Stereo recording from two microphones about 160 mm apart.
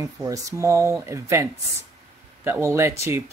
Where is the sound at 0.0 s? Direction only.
20° right (ahead or behind).